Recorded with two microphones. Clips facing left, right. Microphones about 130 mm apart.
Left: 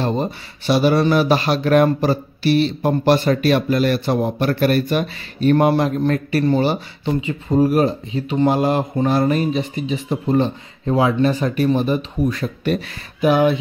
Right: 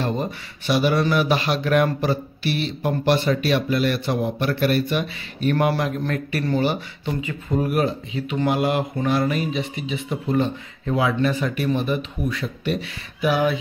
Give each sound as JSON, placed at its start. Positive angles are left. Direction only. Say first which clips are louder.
{"t": 0.0, "sound": "speech", "louder": "left 4 dB", "side_deg": 30}